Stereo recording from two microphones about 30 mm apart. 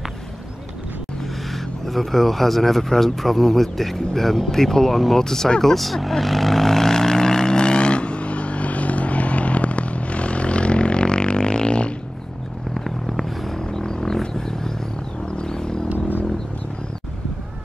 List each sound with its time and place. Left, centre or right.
1.5 s speech: centre
5.6 s vehicle: centre; by 11.9 s left
12.7 s vehicle: centre
13.6 s a sound: left
14.2 s vehicle: centre
15.3 s a sound: left